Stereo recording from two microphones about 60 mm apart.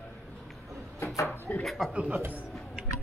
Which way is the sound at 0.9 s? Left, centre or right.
Left.